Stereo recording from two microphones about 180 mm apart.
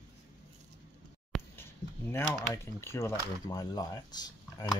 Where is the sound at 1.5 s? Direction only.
15° left (ahead or behind).